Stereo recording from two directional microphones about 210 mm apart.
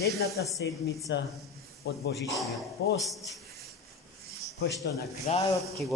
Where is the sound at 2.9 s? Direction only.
Centre (ahead or behind).